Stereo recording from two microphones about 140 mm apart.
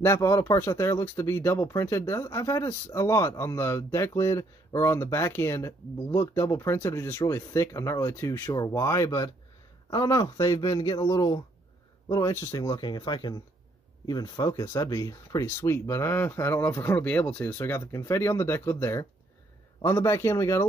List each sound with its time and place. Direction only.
0.0 s speech: 20° left (ahead or behind)